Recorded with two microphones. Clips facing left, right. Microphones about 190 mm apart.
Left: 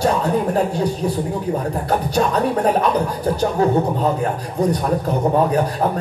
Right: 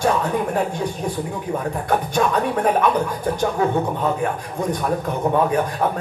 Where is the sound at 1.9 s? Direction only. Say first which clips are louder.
Left 1 dB; 35° left (ahead or behind).